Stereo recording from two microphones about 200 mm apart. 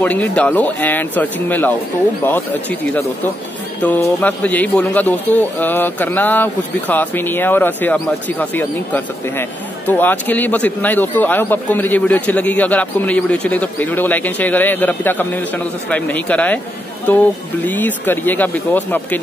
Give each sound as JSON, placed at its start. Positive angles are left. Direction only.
{"t": 0.0, "sound": "a man's voice", "side_deg": 5}
{"t": 17.6, "sound": "a man's voice", "side_deg": 10}